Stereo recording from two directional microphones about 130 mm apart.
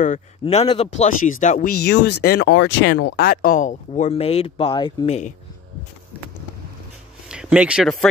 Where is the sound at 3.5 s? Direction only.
75° left (ahead or behind).